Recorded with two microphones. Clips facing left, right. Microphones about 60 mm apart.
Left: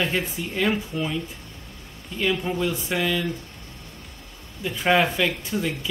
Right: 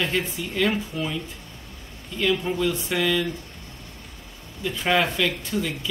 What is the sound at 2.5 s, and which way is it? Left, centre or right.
Speech, centre.